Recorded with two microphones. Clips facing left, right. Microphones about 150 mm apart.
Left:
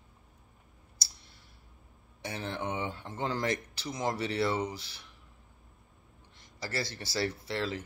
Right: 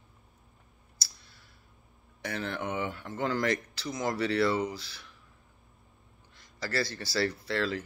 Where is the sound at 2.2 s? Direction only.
25° left (ahead or behind).